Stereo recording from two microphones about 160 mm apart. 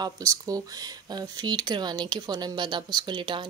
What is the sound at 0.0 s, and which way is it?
Speech, 20° right (ahead or behind).